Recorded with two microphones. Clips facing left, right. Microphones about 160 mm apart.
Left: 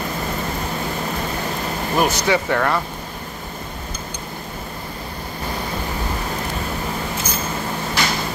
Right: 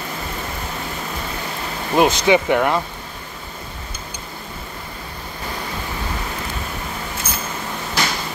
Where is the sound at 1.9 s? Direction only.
20° right (ahead or behind).